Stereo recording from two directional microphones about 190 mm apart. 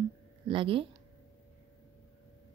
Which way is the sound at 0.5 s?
25° right (ahead or behind).